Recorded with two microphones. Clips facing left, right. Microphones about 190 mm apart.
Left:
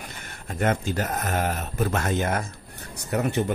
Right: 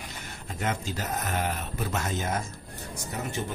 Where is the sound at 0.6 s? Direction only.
55° left (ahead or behind).